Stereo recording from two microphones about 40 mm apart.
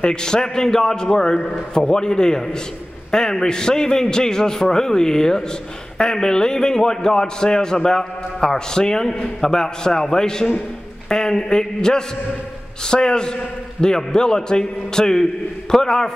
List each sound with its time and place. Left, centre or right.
0.0 s a man's voice: centre